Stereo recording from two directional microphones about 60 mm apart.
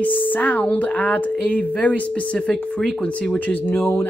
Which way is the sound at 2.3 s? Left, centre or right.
Centre.